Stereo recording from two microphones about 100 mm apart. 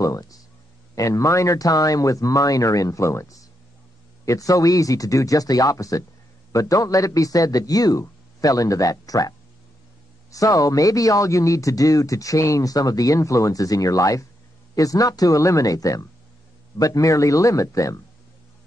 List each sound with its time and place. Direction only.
0.0 s a man's voice: 35° left (ahead or behind)
10.3 s a man's voice: 35° left (ahead or behind)